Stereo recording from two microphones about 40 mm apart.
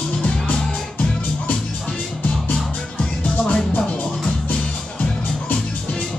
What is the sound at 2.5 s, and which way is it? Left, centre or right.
Music, left.